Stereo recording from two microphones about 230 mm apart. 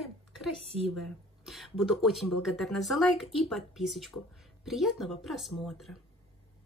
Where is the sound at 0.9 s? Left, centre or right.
Centre.